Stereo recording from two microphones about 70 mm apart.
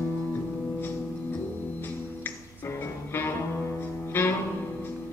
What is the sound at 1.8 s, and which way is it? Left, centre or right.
Music, left.